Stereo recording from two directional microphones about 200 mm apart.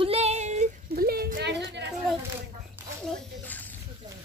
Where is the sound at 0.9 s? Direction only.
50° right (ahead or behind).